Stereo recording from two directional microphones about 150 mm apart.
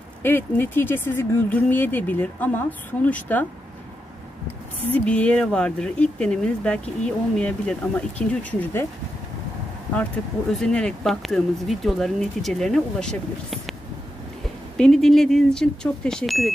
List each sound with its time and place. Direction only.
0.2 s speech: 15° left (ahead or behind)
4.8 s speech: 10° left (ahead or behind)
10.5 s speech: 5° left (ahead or behind)
14.8 s speech: centre (ahead or behind)